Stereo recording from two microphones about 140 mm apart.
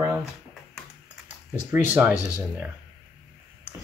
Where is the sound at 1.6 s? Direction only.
10° right (ahead or behind).